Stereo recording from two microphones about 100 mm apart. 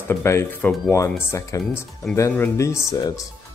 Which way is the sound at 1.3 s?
30° left (ahead or behind).